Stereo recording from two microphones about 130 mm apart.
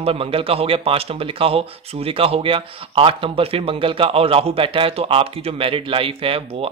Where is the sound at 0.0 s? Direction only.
45° right (ahead or behind).